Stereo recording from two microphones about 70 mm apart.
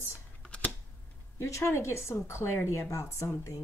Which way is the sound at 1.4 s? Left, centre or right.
Left.